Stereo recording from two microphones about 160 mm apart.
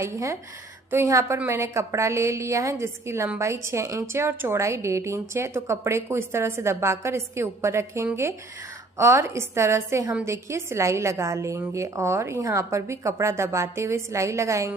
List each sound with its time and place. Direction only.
0.0 s a woman's voice: 20° right (ahead or behind)